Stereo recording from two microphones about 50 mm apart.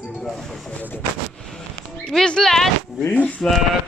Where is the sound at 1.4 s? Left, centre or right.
Centre.